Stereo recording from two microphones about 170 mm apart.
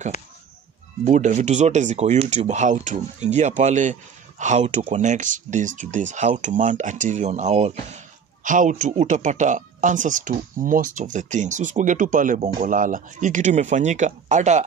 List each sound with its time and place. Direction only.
1.0 s speech: 45° right (ahead or behind)